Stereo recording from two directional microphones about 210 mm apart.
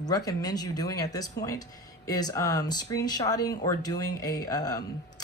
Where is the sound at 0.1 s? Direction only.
15° left (ahead or behind).